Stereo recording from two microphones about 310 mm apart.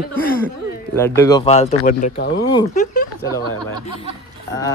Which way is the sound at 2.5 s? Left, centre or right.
Centre.